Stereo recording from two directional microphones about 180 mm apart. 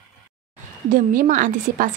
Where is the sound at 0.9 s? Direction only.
50° right (ahead or behind).